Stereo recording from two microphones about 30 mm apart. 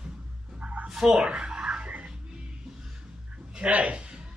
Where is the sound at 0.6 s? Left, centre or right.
Right.